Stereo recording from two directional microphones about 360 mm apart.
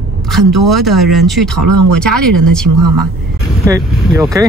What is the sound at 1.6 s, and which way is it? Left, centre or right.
Speech, right.